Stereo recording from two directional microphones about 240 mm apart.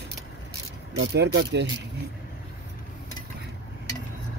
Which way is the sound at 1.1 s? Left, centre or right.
Right.